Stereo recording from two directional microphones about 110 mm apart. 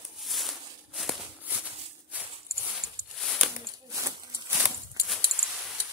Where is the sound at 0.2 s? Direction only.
Centre (ahead or behind).